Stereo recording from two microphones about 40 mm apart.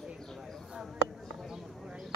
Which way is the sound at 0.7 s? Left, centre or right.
Centre.